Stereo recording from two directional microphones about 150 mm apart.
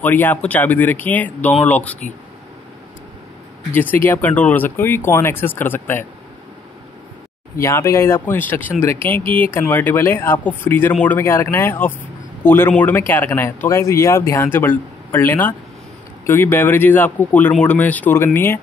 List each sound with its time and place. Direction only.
0.0 s speech: 10° left (ahead or behind)
3.7 s speech: 15° left (ahead or behind)
7.5 s speech: 20° left (ahead or behind)